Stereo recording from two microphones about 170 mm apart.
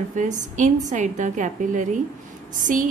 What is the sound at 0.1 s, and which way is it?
A woman's voice, 45° right (ahead or behind).